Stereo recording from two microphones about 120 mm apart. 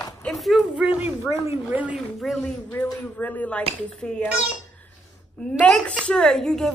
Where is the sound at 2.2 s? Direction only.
Centre (ahead or behind).